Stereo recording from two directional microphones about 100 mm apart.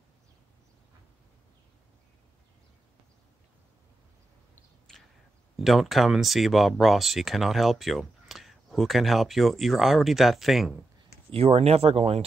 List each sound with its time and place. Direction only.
5.6 s speech: centre (ahead or behind)
11.3 s speech: 85° right